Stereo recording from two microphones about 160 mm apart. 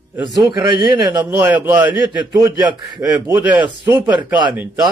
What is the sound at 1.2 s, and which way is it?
Speech, 10° right (ahead or behind).